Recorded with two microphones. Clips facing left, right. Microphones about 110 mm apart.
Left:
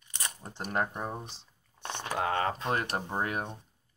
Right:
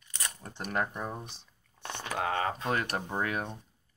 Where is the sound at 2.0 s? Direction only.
40° left (ahead or behind).